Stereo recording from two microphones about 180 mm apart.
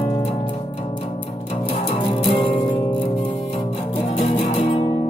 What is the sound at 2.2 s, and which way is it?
Music, 30° left (ahead or behind).